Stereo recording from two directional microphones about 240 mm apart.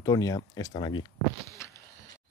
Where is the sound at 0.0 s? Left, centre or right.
Centre.